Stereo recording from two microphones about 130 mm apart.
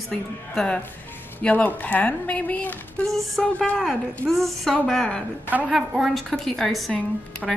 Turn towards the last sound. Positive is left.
turn(degrees=0)  # may be behind; listen again after turning